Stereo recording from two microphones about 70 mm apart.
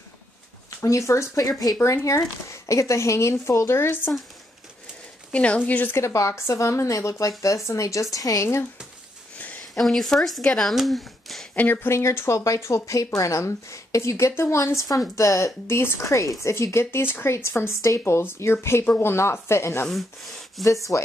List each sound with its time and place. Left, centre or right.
0.7 s a woman's voice: left
5.3 s speech: centre
5.9 s a woman's voice: left
9.8 s speech: centre
11.5 s speech: left
12.0 s a woman's voice: left
15.6 s speech: left
16.1 s speech: left
18.9 s speech: left
19.1 s speech: left
19.9 s speech: centre
20.9 s speech: left